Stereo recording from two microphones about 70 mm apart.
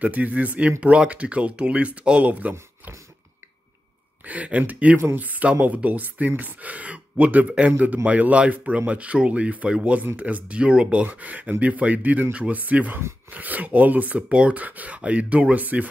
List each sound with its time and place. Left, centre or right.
0.0 s speech: right
4.2 s speech: right